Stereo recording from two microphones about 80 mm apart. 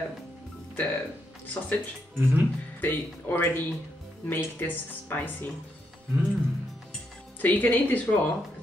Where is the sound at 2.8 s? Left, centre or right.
Left.